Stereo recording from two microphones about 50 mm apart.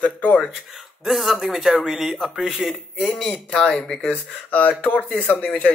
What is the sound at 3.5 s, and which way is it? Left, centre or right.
Speech, centre.